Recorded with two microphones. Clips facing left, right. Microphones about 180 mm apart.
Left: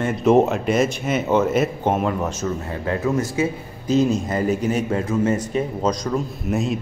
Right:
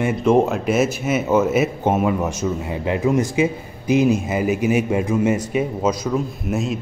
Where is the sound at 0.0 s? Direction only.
Centre (ahead or behind).